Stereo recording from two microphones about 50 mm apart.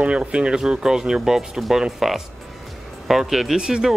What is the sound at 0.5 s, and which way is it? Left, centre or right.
Speech, centre.